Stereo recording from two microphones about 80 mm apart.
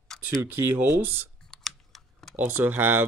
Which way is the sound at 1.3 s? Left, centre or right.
Centre.